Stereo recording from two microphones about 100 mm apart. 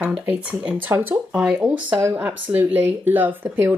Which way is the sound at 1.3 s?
5° right (ahead or behind).